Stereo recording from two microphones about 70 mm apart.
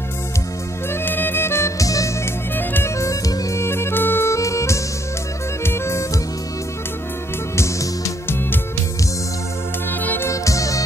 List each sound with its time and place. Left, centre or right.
1.0 s music: left
1.8 s music: left
2.5 s music: left
3.0 s music: left
7.5 s music: left
10.0 s music: left
10.3 s music: left